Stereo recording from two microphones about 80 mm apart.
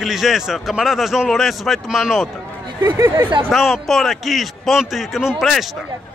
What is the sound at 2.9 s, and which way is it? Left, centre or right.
Speech, right.